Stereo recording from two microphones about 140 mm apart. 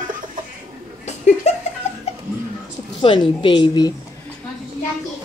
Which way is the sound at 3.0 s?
35° left (ahead or behind).